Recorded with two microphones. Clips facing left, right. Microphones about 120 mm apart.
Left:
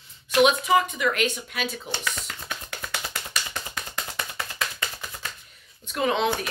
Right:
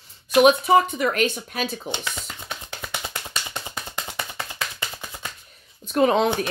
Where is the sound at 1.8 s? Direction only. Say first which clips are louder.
Right 1 dB; 20° right (ahead or behind).